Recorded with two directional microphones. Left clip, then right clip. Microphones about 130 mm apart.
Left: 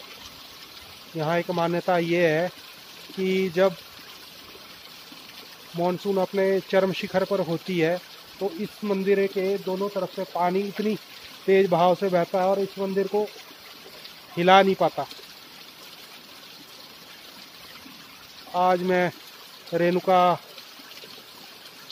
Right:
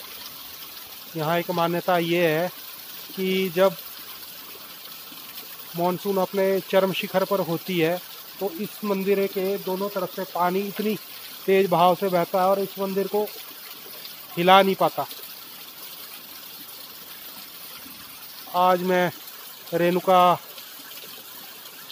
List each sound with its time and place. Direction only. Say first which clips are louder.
1.1 s speech: right 1 dB; 10° right (ahead or behind)
6.0 s speech: even; 20° right (ahead or behind)
14.3 s speech: right 1 dB; centre (ahead or behind)
18.5 s speech: right 2 dB; 15° right (ahead or behind)